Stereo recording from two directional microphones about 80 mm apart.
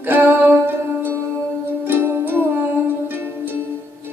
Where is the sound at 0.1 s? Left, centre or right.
Right.